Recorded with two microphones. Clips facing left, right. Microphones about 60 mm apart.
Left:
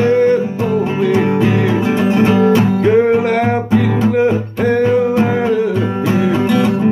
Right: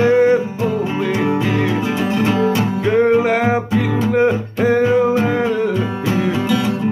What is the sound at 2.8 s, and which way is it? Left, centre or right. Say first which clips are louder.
Music: right 1 dB; centre.